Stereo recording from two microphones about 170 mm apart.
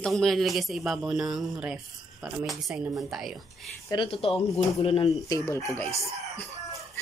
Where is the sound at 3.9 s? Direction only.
25° left (ahead or behind).